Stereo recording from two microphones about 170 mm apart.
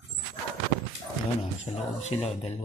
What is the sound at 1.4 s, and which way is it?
Speech, 40° left (ahead or behind).